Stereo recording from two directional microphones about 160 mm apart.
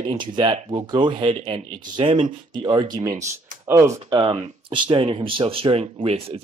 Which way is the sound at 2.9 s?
20° right (ahead or behind).